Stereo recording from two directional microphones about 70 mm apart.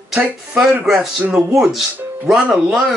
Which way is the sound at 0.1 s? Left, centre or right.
Centre.